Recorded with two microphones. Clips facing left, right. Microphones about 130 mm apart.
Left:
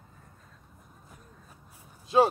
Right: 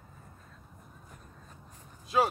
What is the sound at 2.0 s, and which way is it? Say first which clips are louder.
Speech: left 5 dB; 30° left (ahead or behind).